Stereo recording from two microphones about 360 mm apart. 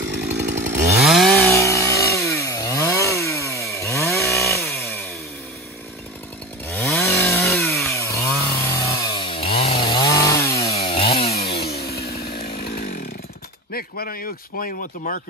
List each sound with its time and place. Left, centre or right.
0.1 s chainsaw: right
0.9 s chainsaw: centre
6.7 s chainsaw: centre; by 12.9 s left
13.7 s speech: left